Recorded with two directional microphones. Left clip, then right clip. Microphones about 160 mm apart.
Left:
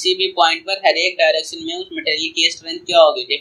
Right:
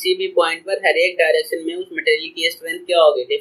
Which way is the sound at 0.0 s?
25° left (ahead or behind).